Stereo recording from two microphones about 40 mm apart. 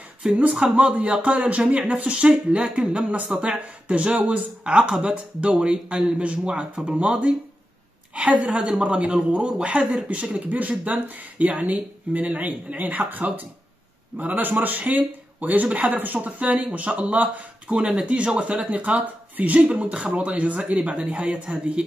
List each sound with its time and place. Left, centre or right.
0.4 s a woman's voice: right
8.1 s a woman's voice: right
16.3 s speech: right
17.7 s a woman's voice: right